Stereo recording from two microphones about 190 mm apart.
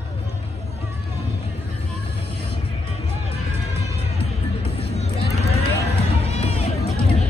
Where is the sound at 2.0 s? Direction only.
30° left (ahead or behind).